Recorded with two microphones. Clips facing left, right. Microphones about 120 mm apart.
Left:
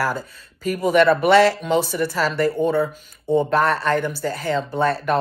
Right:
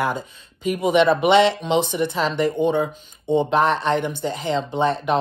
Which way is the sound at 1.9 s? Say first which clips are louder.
Even; 10° right (ahead or behind).